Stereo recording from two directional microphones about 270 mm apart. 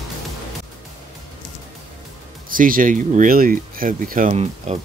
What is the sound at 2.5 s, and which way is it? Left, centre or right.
Speech, right.